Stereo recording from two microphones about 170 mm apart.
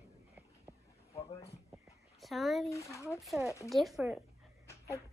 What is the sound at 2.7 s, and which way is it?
Speech, 15° left (ahead or behind).